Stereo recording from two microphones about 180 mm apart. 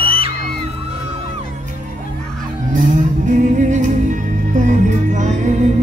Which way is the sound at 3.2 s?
45° right (ahead or behind).